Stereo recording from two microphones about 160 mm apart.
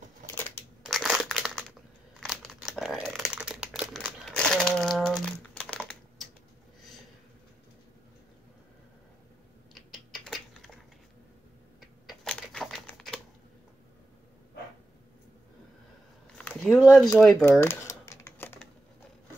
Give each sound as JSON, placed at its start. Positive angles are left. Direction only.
{"t": 0.8, "sound": "crushing", "side_deg": 0}
{"t": 2.1, "sound": "crumpling", "side_deg": 0}
{"t": 9.8, "sound": "a sound", "side_deg": 0}
{"t": 12.1, "sound": "typewriter", "side_deg": 5}
{"t": 16.3, "sound": "a sound", "side_deg": 10}
{"t": 16.8, "sound": "speech", "side_deg": -5}
{"t": 17.4, "sound": "typewriter", "side_deg": 15}